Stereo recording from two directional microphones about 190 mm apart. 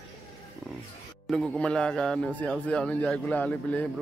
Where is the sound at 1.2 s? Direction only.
5° left (ahead or behind).